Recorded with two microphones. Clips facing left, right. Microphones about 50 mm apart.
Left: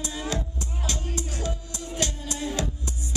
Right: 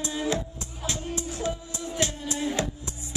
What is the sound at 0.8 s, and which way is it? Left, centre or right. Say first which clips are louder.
Music: right 2 dB; right.